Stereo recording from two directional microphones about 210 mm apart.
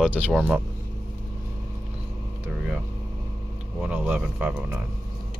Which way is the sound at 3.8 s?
5° right (ahead or behind).